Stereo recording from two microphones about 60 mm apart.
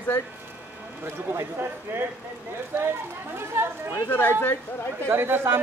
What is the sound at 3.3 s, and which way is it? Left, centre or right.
Speech, right.